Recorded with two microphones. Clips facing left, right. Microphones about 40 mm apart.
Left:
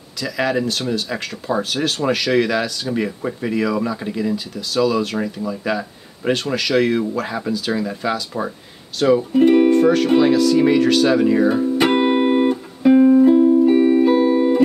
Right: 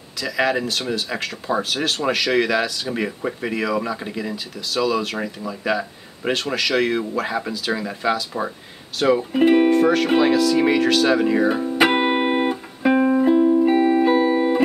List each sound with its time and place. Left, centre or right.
0.2 s speech: centre
9.7 s music: centre